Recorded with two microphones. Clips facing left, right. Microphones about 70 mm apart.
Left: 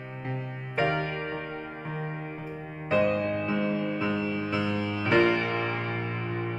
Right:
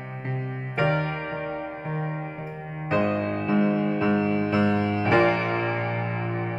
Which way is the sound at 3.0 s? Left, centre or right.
Right.